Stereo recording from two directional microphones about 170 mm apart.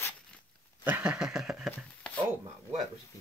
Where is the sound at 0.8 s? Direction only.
10° right (ahead or behind).